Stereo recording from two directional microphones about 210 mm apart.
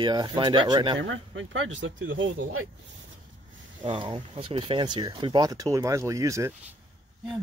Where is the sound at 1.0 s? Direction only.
65° right (ahead or behind).